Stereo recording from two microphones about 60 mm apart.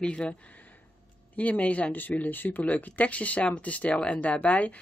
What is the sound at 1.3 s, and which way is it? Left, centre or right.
Speech, left.